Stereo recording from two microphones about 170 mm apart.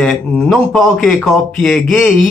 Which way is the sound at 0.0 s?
Centre (ahead or behind).